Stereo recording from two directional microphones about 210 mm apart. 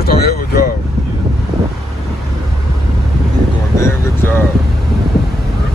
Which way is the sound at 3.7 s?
10° left (ahead or behind).